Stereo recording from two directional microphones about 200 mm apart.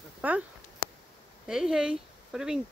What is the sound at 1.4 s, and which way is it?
Speech, 5° right (ahead or behind).